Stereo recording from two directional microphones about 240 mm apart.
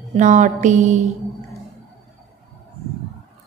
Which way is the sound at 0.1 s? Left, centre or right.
Right.